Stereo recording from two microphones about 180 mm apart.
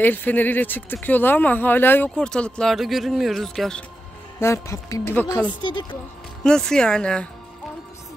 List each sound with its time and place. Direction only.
0.0 s speech: 10° left (ahead or behind)
4.4 s speech: 15° left (ahead or behind)
6.4 s speech: 5° left (ahead or behind)